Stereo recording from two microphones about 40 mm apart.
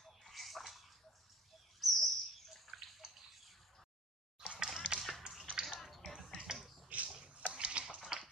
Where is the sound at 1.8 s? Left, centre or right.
Centre.